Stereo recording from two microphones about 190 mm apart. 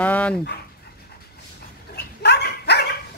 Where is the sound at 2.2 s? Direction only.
60° left (ahead or behind).